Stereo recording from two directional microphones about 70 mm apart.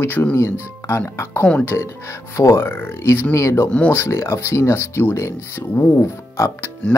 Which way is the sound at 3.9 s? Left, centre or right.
Left.